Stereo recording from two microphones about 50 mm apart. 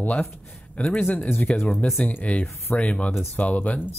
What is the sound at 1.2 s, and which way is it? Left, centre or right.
Speech, left.